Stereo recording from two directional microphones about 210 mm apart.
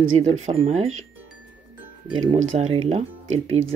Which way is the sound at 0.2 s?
30° right (ahead or behind).